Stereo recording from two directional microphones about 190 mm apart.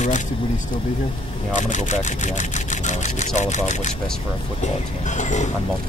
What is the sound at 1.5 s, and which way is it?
Speech, 40° left (ahead or behind).